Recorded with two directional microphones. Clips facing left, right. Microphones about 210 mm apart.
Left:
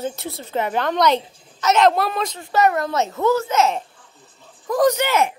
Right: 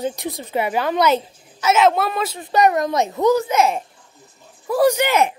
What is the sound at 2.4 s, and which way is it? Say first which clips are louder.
A woman's voice: right 2 dB; 15° right (ahead or behind).